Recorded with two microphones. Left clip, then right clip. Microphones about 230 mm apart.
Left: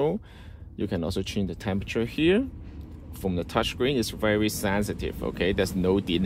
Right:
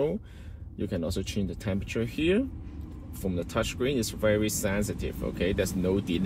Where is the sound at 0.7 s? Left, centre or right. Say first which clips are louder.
Left 3 dB; left.